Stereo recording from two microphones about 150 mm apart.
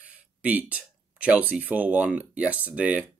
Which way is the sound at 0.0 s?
10° right (ahead or behind).